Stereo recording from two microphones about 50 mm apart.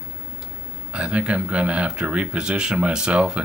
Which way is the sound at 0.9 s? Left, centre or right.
Right.